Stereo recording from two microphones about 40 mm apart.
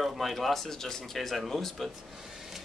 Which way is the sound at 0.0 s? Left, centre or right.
Centre.